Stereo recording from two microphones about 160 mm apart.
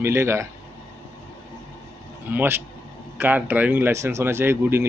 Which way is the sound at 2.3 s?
15° right (ahead or behind).